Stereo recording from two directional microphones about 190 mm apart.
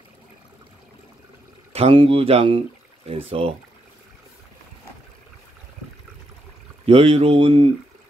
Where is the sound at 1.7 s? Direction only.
30° right (ahead or behind).